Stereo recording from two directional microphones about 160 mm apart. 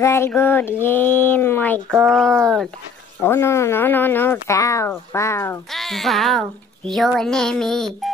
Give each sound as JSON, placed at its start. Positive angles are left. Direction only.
{"t": 0.0, "sound": "a child's voice", "side_deg": 15}
{"t": 3.2, "sound": "speech", "side_deg": 15}
{"t": 5.7, "sound": "a child's voice", "side_deg": 0}